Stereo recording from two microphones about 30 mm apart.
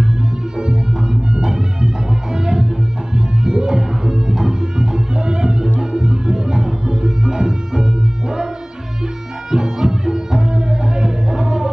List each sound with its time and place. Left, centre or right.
0.6 s music: right
9.5 s music: right